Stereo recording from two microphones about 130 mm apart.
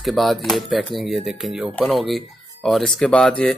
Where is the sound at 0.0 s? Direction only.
Centre (ahead or behind).